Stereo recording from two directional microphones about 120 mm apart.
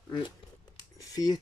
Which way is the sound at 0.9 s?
30° left (ahead or behind).